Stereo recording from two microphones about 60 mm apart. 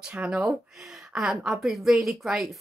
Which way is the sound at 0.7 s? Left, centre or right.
Centre.